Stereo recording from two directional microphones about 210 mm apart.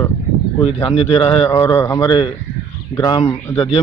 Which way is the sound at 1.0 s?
25° left (ahead or behind).